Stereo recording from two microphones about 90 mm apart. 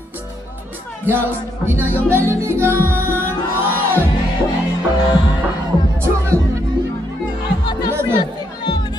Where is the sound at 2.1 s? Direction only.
30° right (ahead or behind).